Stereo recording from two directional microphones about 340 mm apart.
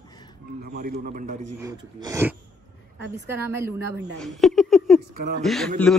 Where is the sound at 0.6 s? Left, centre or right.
Right.